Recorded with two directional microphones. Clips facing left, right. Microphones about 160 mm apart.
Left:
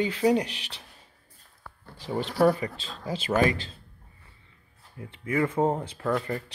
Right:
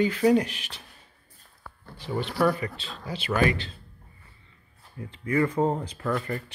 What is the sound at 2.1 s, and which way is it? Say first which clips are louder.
Speech: left 2 dB; 35° left (ahead or behind).